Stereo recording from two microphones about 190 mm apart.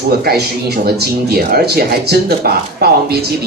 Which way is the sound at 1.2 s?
55° right (ahead or behind).